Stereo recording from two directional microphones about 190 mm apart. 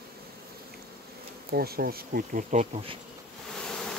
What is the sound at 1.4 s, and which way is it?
Bee, 55° right (ahead or behind).